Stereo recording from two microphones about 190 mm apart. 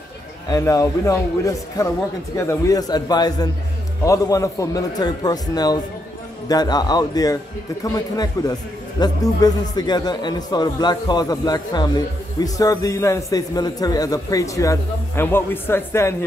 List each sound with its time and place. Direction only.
0.5 s a man's voice: 20° left (ahead or behind)